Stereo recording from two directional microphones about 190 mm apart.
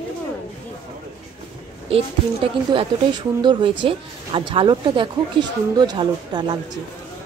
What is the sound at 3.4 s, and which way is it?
Speech, 25° right (ahead or behind).